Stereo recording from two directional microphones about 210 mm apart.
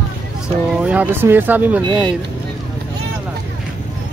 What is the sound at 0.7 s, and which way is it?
Speech, 5° right (ahead or behind).